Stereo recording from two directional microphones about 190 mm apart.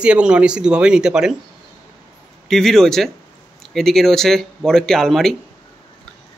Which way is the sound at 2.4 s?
Centre (ahead or behind).